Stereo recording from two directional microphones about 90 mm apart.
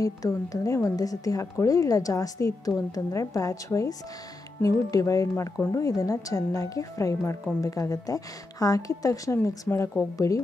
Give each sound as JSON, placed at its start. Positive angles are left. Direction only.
{"t": 0.0, "sound": "a woman's voice", "side_deg": 40}